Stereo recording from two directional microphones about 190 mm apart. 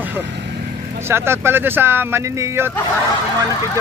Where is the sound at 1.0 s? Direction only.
10° right (ahead or behind).